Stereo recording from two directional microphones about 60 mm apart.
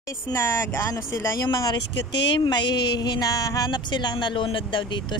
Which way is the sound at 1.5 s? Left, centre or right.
Left.